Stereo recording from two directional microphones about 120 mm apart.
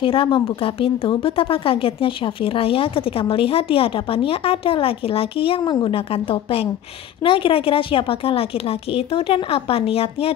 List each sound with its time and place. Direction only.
0.0 s a woman's voice: 50° left (ahead or behind)